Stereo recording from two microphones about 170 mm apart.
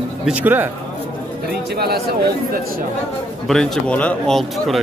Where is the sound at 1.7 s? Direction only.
70° right (ahead or behind).